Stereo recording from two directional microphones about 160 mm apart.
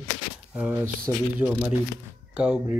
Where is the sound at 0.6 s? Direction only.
10° right (ahead or behind).